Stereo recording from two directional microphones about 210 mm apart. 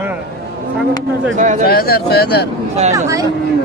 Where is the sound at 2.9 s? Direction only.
15° right (ahead or behind).